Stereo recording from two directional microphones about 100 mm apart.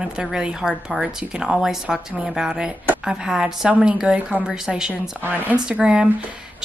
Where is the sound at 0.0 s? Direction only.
5° right (ahead or behind).